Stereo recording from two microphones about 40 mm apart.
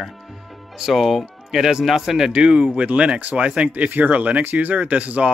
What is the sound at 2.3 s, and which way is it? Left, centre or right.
Speech, right.